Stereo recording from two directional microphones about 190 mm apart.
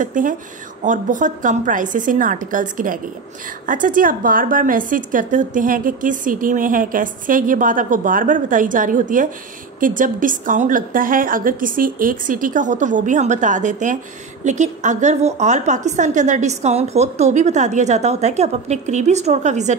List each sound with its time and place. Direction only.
0.0 s a woman's voice: 45° right (ahead or behind)